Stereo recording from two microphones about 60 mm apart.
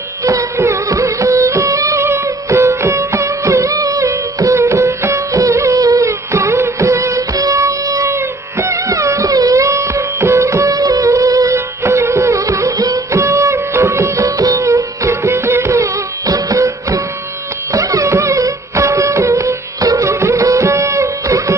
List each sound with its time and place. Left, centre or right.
0.2 s music: right
8.1 s music: right
11.5 s music: right
20.1 s music: right